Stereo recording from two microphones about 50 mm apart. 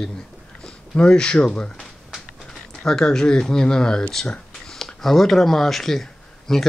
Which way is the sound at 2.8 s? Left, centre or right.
Centre.